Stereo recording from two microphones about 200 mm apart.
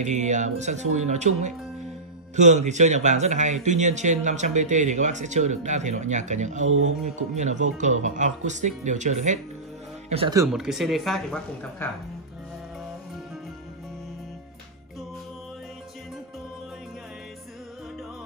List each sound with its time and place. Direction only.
0.0 s speech: 35° right (ahead or behind)
10.5 s speech: centre (ahead or behind)